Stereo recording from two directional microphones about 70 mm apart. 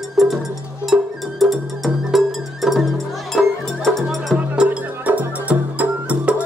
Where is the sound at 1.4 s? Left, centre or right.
Centre.